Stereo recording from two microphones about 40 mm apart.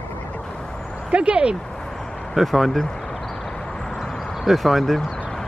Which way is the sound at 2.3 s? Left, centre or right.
Centre.